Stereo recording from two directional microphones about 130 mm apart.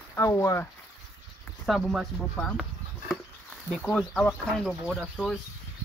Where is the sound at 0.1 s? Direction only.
20° left (ahead or behind).